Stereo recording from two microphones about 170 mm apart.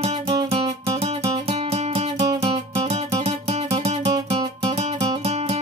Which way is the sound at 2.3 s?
25° right (ahead or behind).